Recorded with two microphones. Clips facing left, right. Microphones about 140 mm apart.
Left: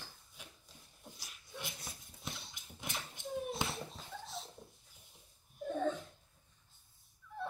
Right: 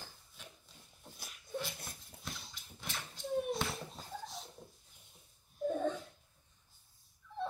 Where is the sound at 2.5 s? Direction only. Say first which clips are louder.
Left 1 dB; 20° left (ahead or behind).